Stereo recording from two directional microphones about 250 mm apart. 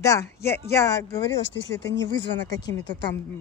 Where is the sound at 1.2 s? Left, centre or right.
Left.